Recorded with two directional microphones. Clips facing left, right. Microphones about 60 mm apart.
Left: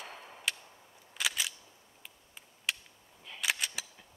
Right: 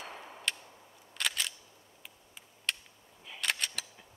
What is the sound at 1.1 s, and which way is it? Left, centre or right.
Single-lens reflex camera, centre.